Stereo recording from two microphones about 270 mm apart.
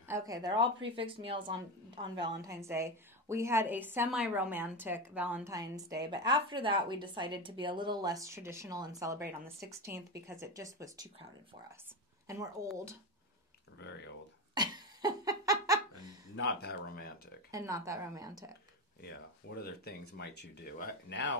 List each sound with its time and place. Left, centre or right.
0.1 s a woman's voice: centre
12.3 s a woman's voice: centre
13.7 s speech: left
14.5 s a sound: centre
16.3 s speech: left
17.5 s a woman's voice: centre
19.0 s speech: left